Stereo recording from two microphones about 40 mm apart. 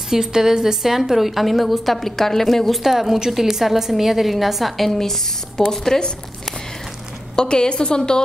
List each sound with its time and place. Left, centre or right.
0.1 s a woman's voice: centre
7.3 s a woman's voice: left